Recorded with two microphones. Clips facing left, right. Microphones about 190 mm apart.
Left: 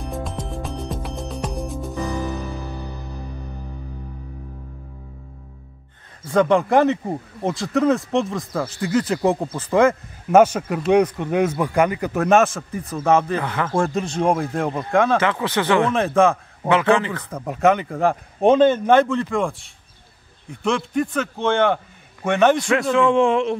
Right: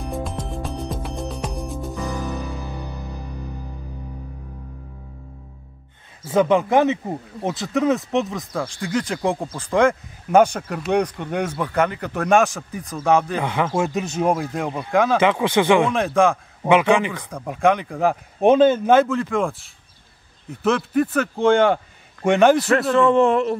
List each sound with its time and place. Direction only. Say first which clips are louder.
0.0 s music: right 1 dB; centre (ahead or behind)
6.2 s speech: even; 5° right (ahead or behind)
13.4 s speech: right 2 dB; 15° right (ahead or behind)
13.7 s speech: left 1 dB; 5° right (ahead or behind)
15.1 s speech: right 3 dB; 15° right (ahead or behind)
15.9 s speech: left 1 dB; centre (ahead or behind)
16.6 s speech: right 1 dB; 15° right (ahead or behind)
17.3 s speech: left 1 dB; 5° left (ahead or behind)